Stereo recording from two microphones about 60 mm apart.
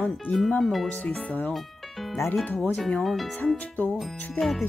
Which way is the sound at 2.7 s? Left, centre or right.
Centre.